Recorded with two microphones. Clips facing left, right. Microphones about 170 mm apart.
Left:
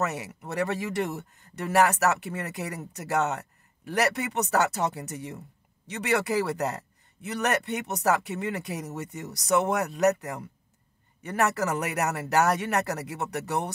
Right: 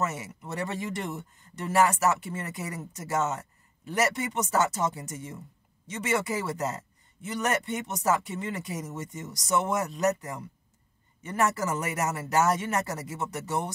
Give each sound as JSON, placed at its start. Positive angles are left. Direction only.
{"t": 0.0, "sound": "speech", "side_deg": 65}